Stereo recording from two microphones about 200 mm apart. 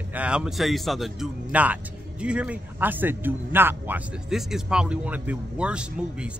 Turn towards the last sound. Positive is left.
turn(degrees=-5)  # may be behind; listen again after turning